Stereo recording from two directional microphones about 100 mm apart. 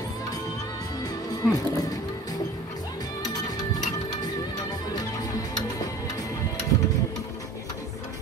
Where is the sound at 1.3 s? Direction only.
40° left (ahead or behind).